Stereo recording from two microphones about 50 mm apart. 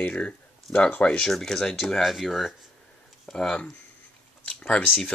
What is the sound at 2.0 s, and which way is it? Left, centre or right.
Speech, centre.